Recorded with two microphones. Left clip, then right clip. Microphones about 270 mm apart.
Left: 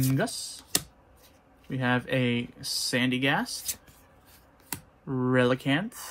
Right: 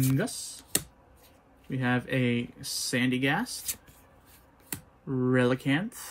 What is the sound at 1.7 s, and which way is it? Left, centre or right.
Speech, centre.